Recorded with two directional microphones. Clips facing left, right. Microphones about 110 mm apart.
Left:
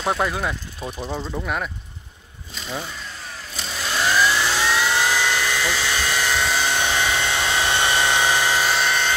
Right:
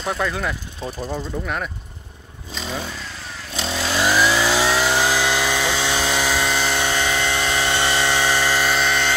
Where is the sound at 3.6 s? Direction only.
90° right.